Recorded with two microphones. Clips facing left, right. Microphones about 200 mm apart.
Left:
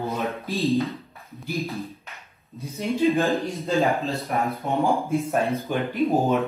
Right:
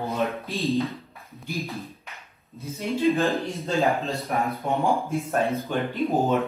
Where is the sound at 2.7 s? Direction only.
15° left (ahead or behind).